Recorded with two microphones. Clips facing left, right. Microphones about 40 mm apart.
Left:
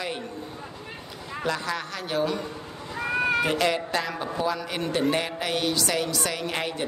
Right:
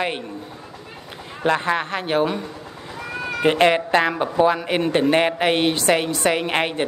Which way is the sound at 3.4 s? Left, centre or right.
Right.